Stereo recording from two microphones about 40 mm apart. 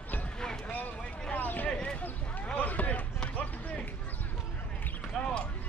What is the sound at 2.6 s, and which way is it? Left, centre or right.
Basketball bounce, left.